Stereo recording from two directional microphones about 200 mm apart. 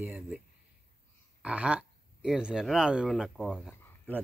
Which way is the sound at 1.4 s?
5° right (ahead or behind).